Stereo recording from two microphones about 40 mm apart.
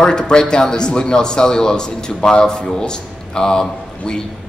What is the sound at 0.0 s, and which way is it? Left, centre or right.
Speech, centre.